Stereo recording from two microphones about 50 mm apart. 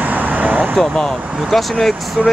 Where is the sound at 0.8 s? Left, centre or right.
Centre.